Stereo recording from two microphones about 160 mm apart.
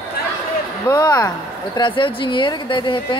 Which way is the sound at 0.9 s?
25° left (ahead or behind).